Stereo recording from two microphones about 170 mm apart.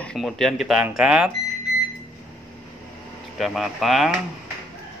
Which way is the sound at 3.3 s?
Centre (ahead or behind).